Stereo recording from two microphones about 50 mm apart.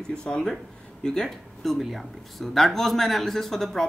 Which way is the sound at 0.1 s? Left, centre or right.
Centre.